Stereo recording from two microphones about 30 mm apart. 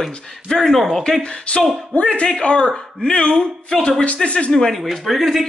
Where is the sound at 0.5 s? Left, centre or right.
Left.